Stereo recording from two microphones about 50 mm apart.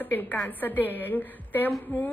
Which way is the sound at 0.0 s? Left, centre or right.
Left.